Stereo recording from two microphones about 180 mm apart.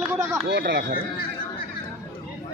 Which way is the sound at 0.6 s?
75° right (ahead or behind).